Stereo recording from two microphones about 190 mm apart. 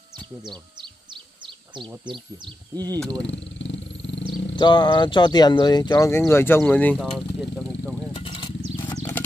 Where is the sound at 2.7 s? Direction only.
20° right (ahead or behind).